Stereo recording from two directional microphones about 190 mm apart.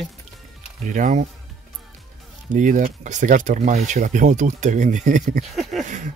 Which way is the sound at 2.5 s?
40° right (ahead or behind).